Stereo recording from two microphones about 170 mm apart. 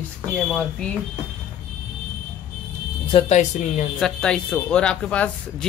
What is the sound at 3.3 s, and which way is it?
Speech, 45° left (ahead or behind).